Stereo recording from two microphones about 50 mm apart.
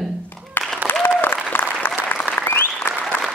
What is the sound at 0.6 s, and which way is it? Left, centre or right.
Applause, left.